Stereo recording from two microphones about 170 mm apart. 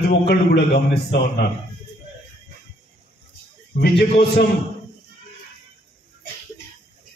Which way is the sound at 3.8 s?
70° left (ahead or behind).